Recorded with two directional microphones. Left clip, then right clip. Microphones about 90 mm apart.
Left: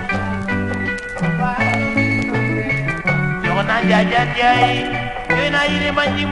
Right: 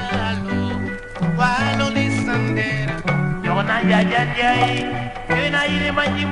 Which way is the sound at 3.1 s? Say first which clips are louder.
Left 3 dB; 20° right (ahead or behind).